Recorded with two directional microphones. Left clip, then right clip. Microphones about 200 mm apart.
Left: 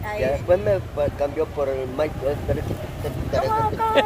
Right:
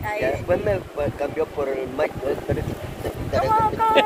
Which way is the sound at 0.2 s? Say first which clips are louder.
Left 3 dB; 35° left (ahead or behind).